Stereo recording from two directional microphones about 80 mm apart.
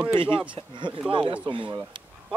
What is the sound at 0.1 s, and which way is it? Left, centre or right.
Speech, right.